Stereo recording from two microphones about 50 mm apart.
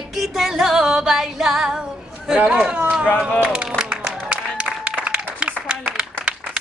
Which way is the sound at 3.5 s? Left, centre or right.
Centre.